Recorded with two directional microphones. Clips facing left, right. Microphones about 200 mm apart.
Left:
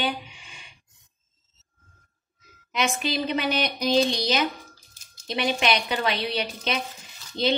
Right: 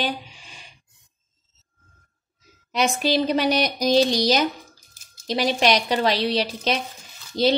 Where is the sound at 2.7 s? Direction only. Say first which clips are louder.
Right 5 dB; 35° right (ahead or behind).